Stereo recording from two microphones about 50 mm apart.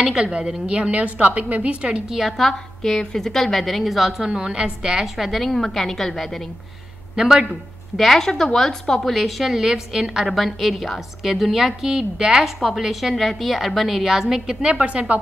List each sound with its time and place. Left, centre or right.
0.0 s a woman's voice: centre
2.1 s a woman's voice: centre
4.3 s a woman's voice: centre
5.0 s a woman's voice: centre
7.2 s a woman's voice: centre
8.0 s a woman's voice: centre
10.2 s a woman's voice: centre; by 15.1 s right